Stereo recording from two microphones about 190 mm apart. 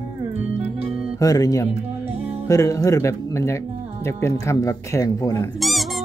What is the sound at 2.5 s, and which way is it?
Speech, 15° left (ahead or behind).